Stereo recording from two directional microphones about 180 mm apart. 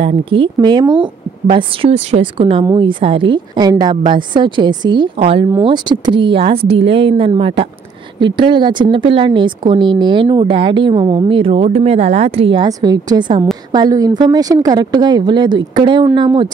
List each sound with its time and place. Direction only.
0.0 s a woman's voice: 30° right (ahead or behind)